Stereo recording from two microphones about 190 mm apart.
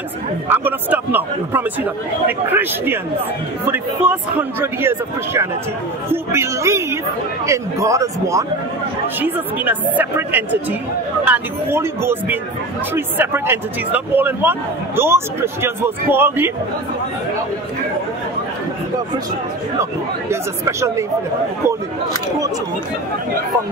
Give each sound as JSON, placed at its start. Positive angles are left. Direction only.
{"t": 0.5, "sound": "speech", "side_deg": -10}
{"t": 19.8, "sound": "speech", "side_deg": -15}